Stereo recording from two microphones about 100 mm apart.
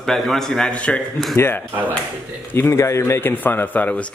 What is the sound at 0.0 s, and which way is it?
Speech, centre (ahead or behind).